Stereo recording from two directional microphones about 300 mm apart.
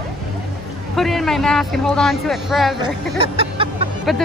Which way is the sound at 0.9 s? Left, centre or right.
Centre.